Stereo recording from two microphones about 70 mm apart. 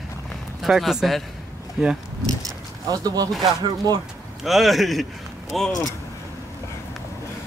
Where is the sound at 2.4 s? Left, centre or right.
Right.